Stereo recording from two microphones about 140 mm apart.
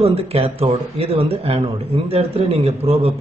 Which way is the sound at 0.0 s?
45° right (ahead or behind).